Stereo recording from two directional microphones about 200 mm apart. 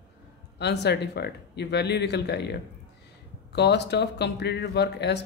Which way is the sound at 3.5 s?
55° left (ahead or behind).